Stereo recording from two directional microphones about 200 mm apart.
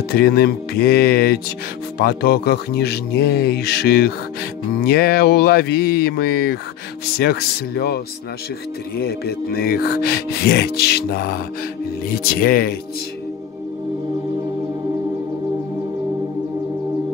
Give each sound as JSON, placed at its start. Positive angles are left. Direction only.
{"t": 0.1, "sound": "music", "side_deg": 50}